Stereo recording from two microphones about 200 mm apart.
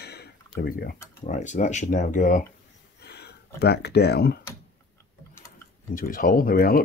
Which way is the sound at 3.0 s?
55° left (ahead or behind).